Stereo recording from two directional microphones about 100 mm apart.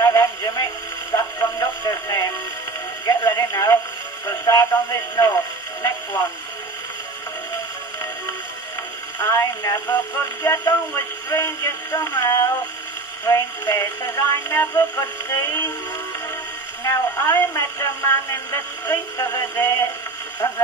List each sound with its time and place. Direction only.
0.0 s radio: 35° left (ahead or behind)
4.3 s music: 35° left (ahead or behind)
5.8 s radio: 30° left (ahead or behind)
9.2 s a sound: 30° left (ahead or behind)
11.2 s music: 30° left (ahead or behind)
12.2 s radio: 30° left (ahead or behind)
13.2 s music: 30° left (ahead or behind)
16.8 s a sound: 30° left (ahead or behind)